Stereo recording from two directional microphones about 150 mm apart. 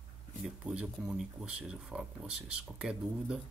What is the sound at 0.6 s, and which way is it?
Speech, 5° right (ahead or behind).